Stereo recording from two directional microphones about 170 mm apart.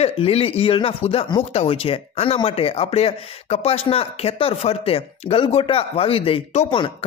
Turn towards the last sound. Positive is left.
turn(degrees=30)  # may be behind; listen again after turning